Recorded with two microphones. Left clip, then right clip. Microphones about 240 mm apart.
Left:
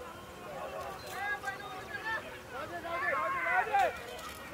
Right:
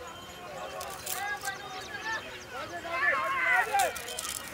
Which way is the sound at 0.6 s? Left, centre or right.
Centre.